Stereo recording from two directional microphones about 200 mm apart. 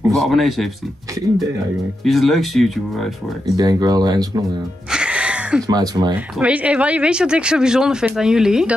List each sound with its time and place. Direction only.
0.1 s speech: centre (ahead or behind)
2.0 s speech: centre (ahead or behind)
3.5 s speech: 20° right (ahead or behind)
4.9 s music: 5° right (ahead or behind)
5.7 s speech: 20° right (ahead or behind)
6.4 s speech: 5° right (ahead or behind)